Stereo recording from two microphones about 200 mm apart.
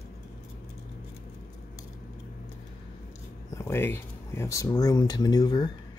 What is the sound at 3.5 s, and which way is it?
Speech, 15° left (ahead or behind).